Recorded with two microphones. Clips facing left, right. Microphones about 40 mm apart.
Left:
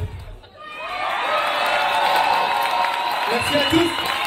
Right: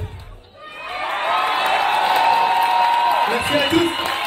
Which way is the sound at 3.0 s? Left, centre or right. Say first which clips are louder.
Right 5 dB; right.